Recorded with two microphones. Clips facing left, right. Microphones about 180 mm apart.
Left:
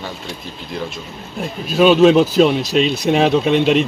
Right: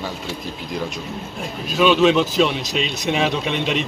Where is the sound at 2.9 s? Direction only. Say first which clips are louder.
Left 5 dB; 35° left (ahead or behind).